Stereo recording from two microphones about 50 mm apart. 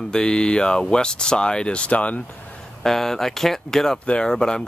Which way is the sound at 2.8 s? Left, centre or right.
Centre.